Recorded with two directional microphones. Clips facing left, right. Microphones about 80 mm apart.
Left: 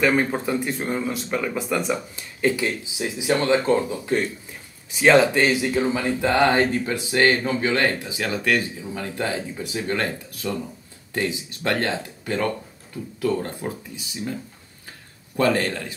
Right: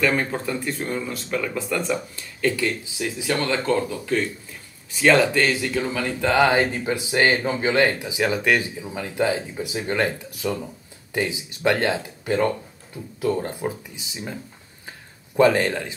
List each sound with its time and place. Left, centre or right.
0.0 s speech: centre
4.9 s speech: centre
6.4 s speech: centre
15.3 s speech: right